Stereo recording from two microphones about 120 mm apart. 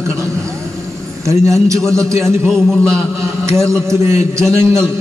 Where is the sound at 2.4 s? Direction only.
5° left (ahead or behind).